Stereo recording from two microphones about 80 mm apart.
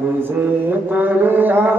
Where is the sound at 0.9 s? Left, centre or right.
Right.